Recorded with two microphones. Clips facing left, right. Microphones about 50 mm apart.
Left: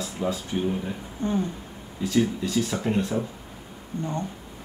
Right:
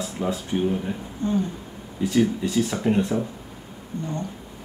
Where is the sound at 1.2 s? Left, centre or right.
Left.